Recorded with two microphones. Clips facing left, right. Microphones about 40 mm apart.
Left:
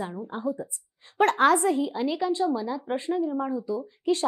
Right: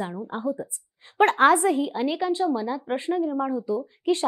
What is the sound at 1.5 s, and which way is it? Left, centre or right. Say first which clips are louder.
Speech: right 2 dB; centre.